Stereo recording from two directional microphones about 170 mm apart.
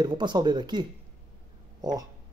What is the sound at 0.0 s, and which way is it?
Speech, 25° right (ahead or behind).